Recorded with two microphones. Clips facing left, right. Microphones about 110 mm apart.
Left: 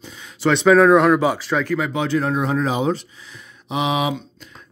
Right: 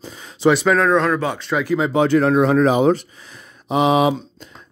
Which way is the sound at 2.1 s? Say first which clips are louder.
Right 6 dB; 70° right (ahead or behind).